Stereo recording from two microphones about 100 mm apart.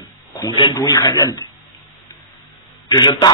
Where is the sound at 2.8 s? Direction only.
45° left (ahead or behind).